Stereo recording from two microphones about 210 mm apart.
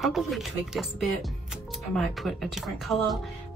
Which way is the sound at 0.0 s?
Centre (ahead or behind).